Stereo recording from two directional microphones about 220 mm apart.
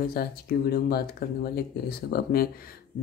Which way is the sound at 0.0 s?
45° left (ahead or behind).